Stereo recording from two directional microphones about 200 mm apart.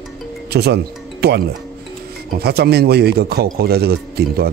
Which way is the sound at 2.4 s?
50° right (ahead or behind).